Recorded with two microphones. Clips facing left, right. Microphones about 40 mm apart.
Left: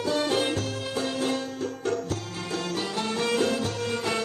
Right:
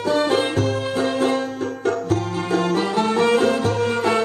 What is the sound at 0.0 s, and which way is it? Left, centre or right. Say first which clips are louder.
Music: right 6 dB; right.